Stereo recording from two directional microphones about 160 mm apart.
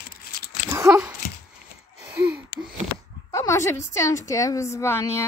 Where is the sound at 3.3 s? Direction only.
20° left (ahead or behind).